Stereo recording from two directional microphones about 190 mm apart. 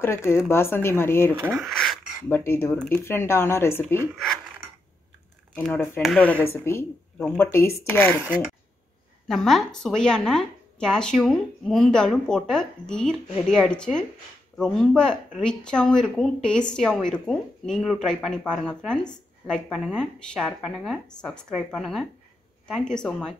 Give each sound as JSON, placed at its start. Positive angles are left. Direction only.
{"t": 0.0, "sound": "speech", "side_deg": 15}
{"t": 1.4, "sound": "speech", "side_deg": -5}
{"t": 2.2, "sound": "speech", "side_deg": 10}
{"t": 4.1, "sound": "a sound", "side_deg": 0}
{"t": 6.0, "sound": "speech", "side_deg": 5}
{"t": 9.3, "sound": "speech", "side_deg": 0}